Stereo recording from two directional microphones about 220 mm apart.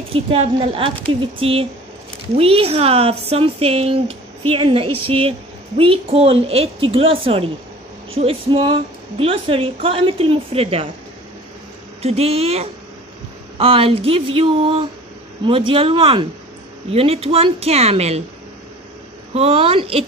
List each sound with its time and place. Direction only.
0.1 s speech: 25° right (ahead or behind)
12.0 s speech: 30° right (ahead or behind)
19.3 s speech: 25° right (ahead or behind)